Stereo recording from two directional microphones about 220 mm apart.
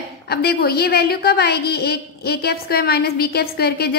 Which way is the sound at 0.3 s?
45° left (ahead or behind).